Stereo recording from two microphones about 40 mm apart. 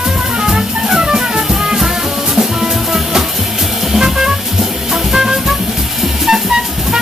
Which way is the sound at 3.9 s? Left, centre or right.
Centre.